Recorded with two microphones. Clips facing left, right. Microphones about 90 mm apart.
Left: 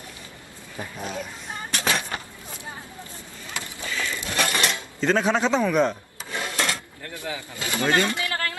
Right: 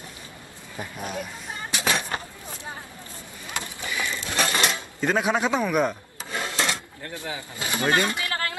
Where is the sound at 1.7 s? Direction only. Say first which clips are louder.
Even; 5° right (ahead or behind).